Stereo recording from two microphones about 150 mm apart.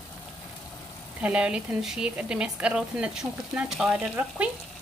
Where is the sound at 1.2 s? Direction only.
10° right (ahead or behind).